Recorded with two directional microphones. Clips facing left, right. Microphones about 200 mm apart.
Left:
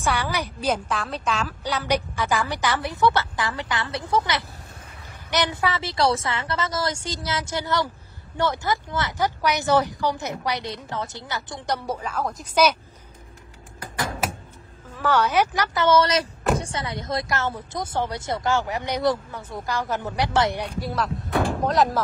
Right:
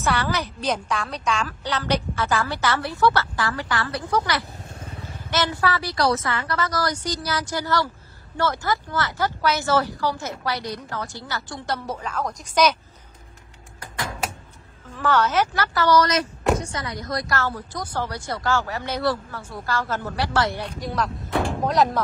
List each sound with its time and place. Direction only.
0.0 s a woman's voice: 10° left (ahead or behind)
15.0 s speech: 10° left (ahead or behind)
20.8 s speech: 5° left (ahead or behind)